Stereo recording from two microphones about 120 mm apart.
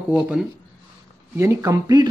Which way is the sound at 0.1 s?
5° right (ahead or behind).